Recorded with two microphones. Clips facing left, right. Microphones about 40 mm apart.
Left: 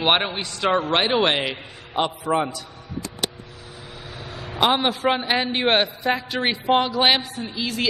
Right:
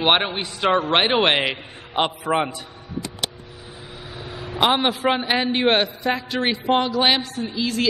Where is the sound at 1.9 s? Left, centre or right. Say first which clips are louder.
Right 1 dB; right.